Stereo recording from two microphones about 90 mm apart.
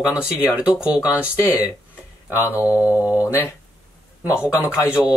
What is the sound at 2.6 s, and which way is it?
Speech, 15° right (ahead or behind).